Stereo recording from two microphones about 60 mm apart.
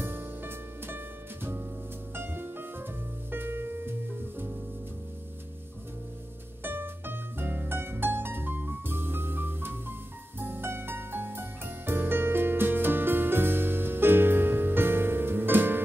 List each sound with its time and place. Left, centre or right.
0.0 s music: right
6.6 s music: right